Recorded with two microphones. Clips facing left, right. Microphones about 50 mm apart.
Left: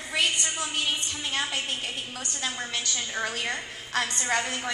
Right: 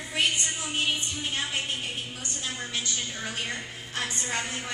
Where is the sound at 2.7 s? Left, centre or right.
Left.